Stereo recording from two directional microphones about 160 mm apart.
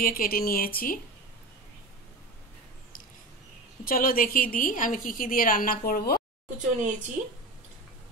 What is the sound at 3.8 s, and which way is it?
A woman's voice, 60° left (ahead or behind).